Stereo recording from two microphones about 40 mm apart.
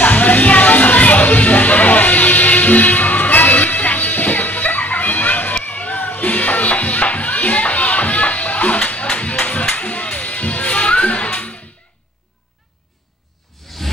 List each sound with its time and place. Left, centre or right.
0.0 s music: left